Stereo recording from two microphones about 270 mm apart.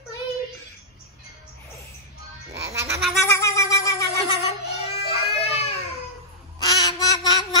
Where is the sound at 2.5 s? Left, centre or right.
Centre.